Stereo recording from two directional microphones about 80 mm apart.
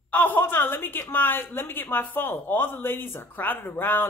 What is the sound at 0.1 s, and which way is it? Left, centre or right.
A woman's voice, left.